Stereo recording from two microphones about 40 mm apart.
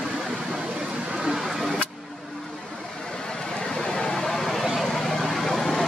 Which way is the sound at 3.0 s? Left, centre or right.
Centre.